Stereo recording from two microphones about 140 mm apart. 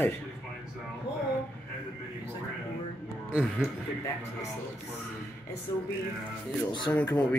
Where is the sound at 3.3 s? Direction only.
10° right (ahead or behind).